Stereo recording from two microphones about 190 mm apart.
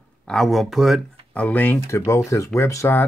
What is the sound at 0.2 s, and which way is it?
Speech, 5° left (ahead or behind).